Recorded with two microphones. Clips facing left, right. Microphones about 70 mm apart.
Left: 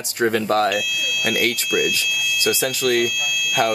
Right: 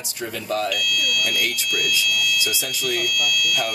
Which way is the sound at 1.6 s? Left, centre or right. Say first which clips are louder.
Left 5 dB; centre.